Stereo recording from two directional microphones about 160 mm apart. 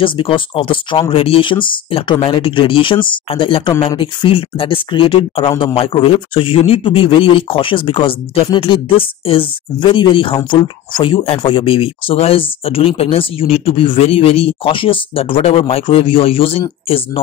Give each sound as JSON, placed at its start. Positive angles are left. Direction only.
{"t": 0.0, "sound": "speech", "side_deg": 35}